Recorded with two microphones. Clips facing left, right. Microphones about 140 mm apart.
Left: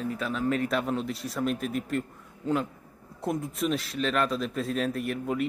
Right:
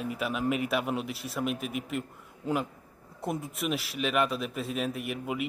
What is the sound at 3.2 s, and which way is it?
Speech, centre (ahead or behind).